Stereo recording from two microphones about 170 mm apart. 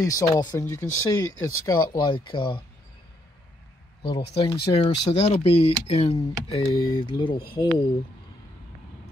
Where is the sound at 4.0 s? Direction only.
30° left (ahead or behind).